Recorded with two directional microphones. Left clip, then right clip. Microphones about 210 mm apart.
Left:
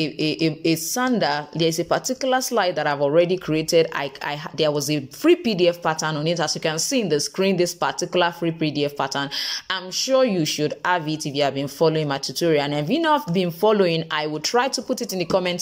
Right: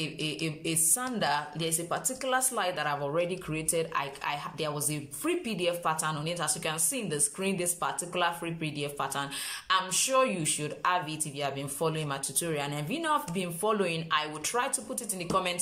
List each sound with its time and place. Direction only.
0.0 s speech: 35° left (ahead or behind)